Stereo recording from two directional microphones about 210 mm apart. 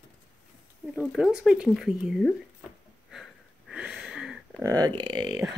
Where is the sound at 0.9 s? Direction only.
5° right (ahead or behind).